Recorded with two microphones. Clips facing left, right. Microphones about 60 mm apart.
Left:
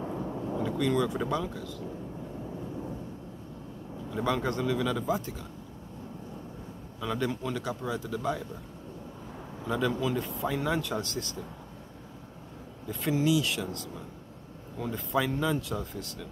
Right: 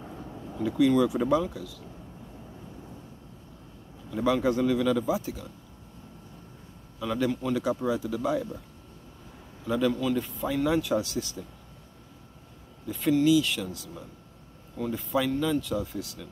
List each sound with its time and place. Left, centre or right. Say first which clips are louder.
0.7 s a man's voice: right 7 dB; centre
4.1 s a man's voice: right 5 dB; centre
7.0 s a man's voice: right 3 dB; centre
7.6 s a man's voice: right 6 dB; centre
9.7 s a man's voice: right 3 dB; centre
10.7 s speech: right 5 dB; centre
12.8 s speech: right 4 dB; centre
14.8 s a man's voice: right 2 dB; centre
15.2 s speech: right 2 dB; centre
15.7 s a man's voice: right 4 dB; centre